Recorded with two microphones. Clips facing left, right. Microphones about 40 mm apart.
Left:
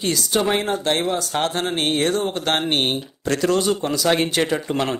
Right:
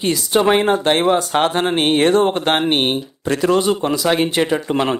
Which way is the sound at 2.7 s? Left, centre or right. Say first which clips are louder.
Right 4 dB; centre.